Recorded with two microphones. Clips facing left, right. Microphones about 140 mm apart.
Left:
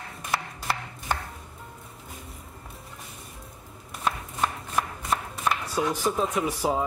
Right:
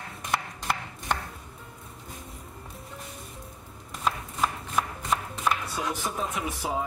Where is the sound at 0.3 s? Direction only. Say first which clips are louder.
Even; 5° left (ahead or behind).